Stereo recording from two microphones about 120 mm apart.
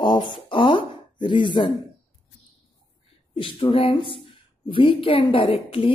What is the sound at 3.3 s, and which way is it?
A woman's voice, 50° left (ahead or behind).